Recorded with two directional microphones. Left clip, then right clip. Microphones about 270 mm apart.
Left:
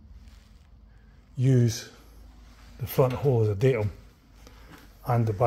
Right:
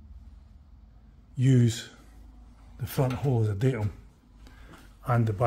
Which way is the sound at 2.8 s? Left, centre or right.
Centre.